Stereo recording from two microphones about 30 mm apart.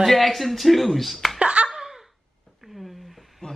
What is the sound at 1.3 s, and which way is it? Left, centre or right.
Laughter, right.